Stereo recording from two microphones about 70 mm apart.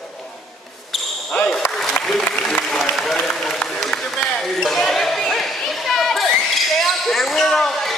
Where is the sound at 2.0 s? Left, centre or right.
Left.